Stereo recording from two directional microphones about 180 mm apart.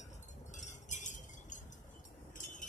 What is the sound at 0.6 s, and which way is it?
Chink, 40° left (ahead or behind).